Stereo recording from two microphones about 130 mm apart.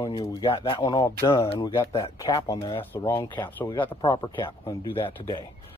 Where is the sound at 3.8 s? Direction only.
40° left (ahead or behind).